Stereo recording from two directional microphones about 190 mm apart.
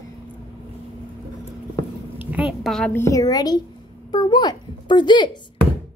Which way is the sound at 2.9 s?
15° left (ahead or behind).